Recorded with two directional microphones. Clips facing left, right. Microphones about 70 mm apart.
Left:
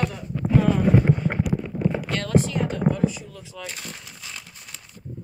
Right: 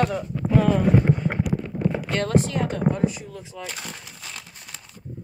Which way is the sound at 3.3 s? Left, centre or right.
Right.